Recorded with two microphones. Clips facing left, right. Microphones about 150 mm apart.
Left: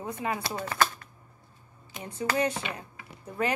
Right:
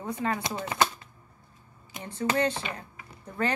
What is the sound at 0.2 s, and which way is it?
Speech, 10° left (ahead or behind).